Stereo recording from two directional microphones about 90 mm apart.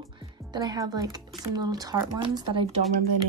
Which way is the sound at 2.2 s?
70° right (ahead or behind).